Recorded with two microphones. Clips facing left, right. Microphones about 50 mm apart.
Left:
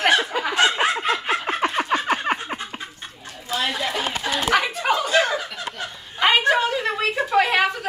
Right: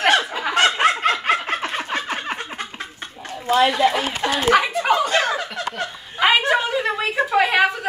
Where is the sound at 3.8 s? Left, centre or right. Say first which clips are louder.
Right 7 dB; centre.